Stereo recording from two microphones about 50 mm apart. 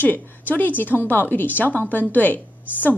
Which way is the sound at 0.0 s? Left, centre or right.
Left.